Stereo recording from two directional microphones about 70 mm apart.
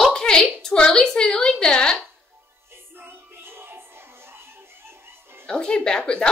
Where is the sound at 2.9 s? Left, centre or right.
Right.